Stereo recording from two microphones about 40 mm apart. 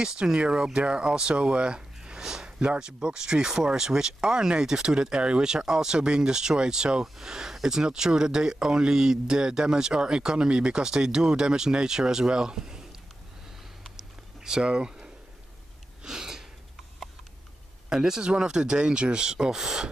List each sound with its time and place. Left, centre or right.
0.0 s speech: right
13.8 s a sound: centre
17.8 s speech: centre